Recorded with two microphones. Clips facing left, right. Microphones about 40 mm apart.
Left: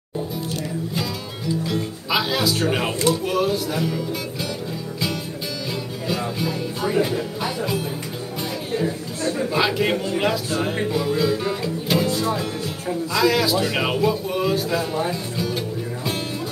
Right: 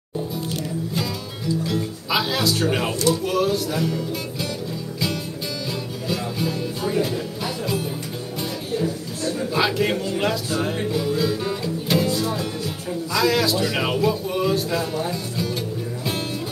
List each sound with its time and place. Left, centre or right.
2.0 s speech: centre
2.5 s music: centre
2.9 s speech: left
3.3 s music: centre
6.8 s music: centre
8.7 s a sound: left
9.5 s music: centre
12.1 s music: left
13.1 s a man's voice: centre
13.7 s music: centre
15.0 s speech: centre